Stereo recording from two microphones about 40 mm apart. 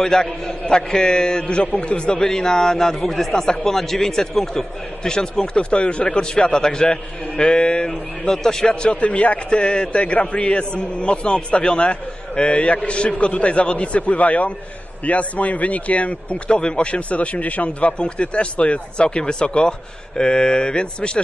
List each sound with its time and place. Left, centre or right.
0.0 s a man's voice: centre
8.8 s a man's voice: left